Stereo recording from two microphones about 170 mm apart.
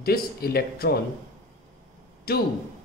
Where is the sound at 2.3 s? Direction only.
65° left (ahead or behind).